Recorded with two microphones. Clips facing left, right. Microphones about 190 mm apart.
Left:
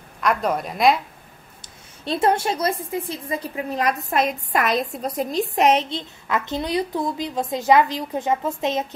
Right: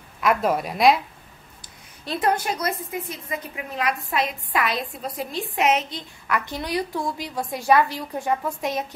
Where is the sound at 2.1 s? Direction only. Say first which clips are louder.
Left 3 dB; 25° left (ahead or behind).